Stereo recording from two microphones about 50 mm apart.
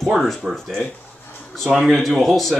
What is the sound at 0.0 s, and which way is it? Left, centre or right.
Speech, centre.